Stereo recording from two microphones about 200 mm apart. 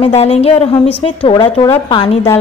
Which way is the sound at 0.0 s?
30° left (ahead or behind).